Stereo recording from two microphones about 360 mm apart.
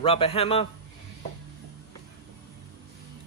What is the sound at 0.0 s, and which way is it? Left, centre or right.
Speech, centre.